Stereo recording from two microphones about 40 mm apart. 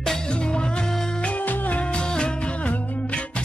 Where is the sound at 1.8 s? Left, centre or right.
Left.